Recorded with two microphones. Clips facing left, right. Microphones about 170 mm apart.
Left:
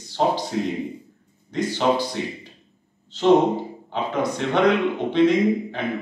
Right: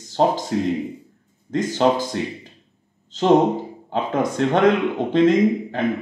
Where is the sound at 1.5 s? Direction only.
45° right (ahead or behind).